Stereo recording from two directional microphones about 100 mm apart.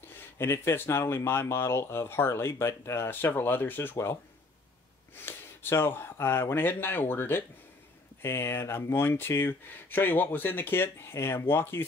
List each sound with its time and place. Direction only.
0.4 s speech: 25° left (ahead or behind)